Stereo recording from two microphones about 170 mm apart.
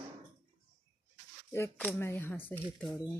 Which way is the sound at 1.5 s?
10° left (ahead or behind).